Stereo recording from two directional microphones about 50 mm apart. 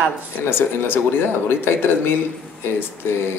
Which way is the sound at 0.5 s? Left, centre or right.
Left.